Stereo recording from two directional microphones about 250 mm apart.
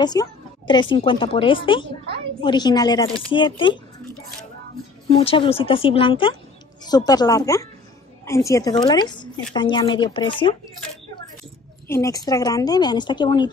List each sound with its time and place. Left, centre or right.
0.0 s a woman's voice: centre
5.1 s a woman's voice: left
11.9 s speech: centre